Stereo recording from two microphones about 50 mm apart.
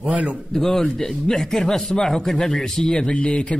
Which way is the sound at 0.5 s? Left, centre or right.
Centre.